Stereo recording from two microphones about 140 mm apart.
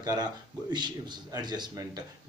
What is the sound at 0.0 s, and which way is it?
A man's voice, 30° right (ahead or behind).